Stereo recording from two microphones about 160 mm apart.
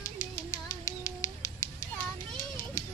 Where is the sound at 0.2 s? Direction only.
50° left (ahead or behind).